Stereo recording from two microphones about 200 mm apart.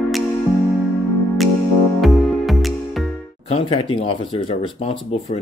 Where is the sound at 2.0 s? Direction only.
Centre (ahead or behind).